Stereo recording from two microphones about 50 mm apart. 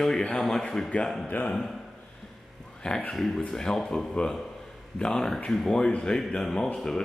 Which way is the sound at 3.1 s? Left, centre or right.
Centre.